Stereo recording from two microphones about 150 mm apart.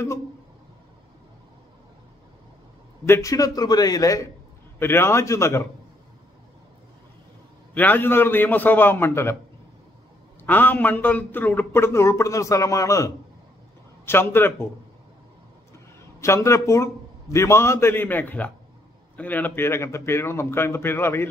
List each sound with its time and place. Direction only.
3.1 s a man's voice: 20° left (ahead or behind)
7.7 s speech: 10° left (ahead or behind)
10.4 s speech: 10° left (ahead or behind)
16.2 s a man's voice: 20° left (ahead or behind)